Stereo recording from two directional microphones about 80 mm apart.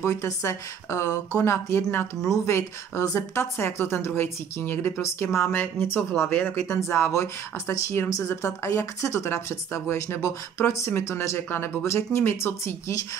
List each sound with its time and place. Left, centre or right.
0.0 s speech: left